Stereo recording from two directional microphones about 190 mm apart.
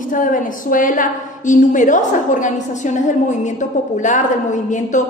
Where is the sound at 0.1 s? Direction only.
45° left (ahead or behind).